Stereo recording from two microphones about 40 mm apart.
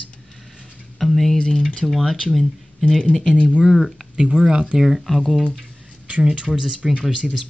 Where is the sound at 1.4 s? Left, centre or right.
Centre.